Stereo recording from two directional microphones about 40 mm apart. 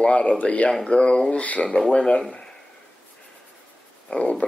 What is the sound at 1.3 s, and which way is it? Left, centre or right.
Speech, left.